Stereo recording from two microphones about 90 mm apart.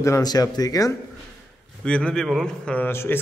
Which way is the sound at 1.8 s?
10° left (ahead or behind).